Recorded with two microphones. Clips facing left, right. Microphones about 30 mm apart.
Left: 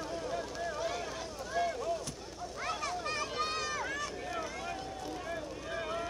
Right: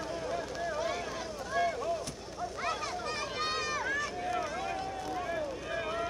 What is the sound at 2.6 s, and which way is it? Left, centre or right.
Vehicle, centre.